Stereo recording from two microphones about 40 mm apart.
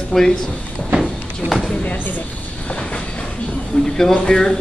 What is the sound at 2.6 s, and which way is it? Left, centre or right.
Train, left.